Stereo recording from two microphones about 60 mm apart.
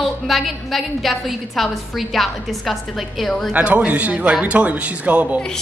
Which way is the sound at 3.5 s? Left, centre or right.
Right.